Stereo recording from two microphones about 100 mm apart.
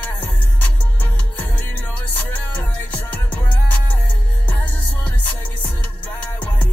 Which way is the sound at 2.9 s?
15° left (ahead or behind).